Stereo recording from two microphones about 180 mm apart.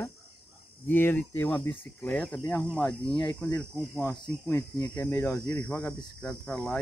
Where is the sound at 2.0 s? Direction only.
5° left (ahead or behind).